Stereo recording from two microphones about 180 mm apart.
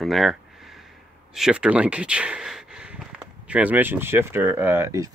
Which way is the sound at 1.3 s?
5° right (ahead or behind).